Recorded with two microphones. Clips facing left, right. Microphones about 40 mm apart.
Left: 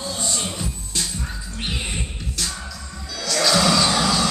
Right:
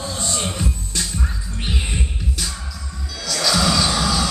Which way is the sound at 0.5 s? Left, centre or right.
Right.